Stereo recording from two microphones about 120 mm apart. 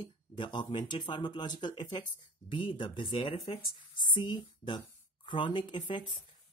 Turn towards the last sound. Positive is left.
turn(degrees=40)  # may be behind; listen again after turning